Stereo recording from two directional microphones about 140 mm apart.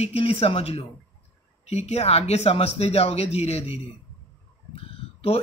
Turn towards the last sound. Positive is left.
turn(degrees=45)  # may be behind; listen again after turning